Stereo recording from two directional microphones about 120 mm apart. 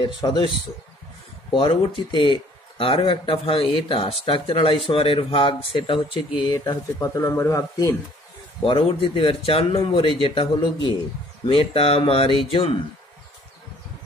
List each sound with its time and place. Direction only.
0.0 s speech: 40° left (ahead or behind)
1.5 s speech: 45° left (ahead or behind); by 7.9 s 25° left (ahead or behind)
8.6 s speech: 50° left (ahead or behind)
11.4 s speech: 50° left (ahead or behind)